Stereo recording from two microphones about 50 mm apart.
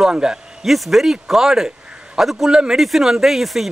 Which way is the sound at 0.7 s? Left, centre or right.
Centre.